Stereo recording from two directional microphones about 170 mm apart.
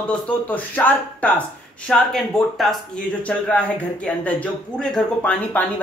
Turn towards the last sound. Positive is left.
turn(degrees=5)  # may be behind; listen again after turning